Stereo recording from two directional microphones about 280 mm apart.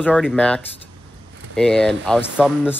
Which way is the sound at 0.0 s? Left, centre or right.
Centre.